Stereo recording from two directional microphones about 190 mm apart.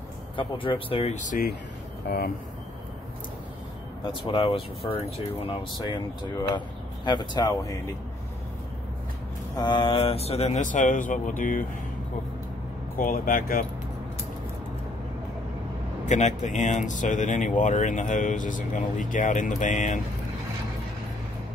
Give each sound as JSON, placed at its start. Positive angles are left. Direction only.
{"t": 0.4, "sound": "speech", "side_deg": 25}
{"t": 4.0, "sound": "speech", "side_deg": 25}
{"t": 7.1, "sound": "speech", "side_deg": 25}
{"t": 9.6, "sound": "speech", "side_deg": 25}
{"t": 12.9, "sound": "speech", "side_deg": 50}
{"t": 16.1, "sound": "speech", "side_deg": 40}